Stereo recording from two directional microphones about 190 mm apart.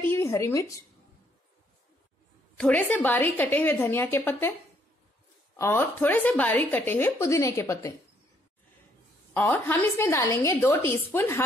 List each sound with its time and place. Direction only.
0.0 s speech: 10° left (ahead or behind)
2.5 s speech: 5° left (ahead or behind)
5.6 s speech: 10° left (ahead or behind)
9.3 s speech: 10° left (ahead or behind)